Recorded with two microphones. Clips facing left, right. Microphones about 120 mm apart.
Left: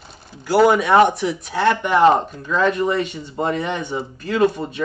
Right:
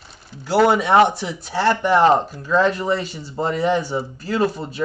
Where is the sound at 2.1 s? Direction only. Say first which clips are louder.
Right 1 dB; 5° right (ahead or behind).